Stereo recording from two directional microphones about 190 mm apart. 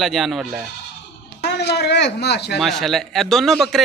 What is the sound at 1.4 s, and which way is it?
Speech, 60° left (ahead or behind).